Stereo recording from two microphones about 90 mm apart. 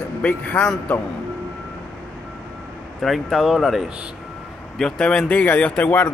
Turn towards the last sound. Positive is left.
turn(degrees=20)  # may be behind; listen again after turning